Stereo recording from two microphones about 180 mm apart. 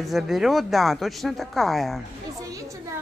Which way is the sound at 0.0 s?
Centre (ahead or behind).